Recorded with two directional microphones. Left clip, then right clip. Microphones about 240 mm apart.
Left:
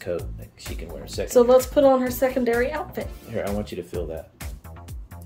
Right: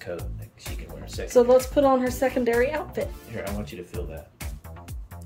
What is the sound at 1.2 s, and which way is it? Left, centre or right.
Speech, centre.